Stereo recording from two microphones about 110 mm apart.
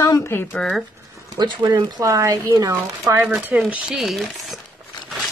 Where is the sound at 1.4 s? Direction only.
40° right (ahead or behind); by 3.2 s 25° right (ahead or behind).